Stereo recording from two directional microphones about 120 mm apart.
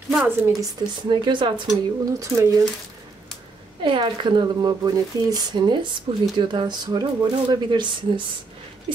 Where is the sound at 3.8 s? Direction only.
45° right (ahead or behind).